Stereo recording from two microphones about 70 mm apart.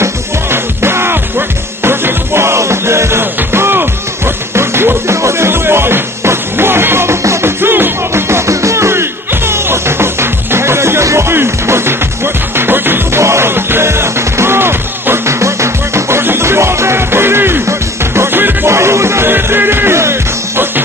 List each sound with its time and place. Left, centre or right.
0.0 s music: right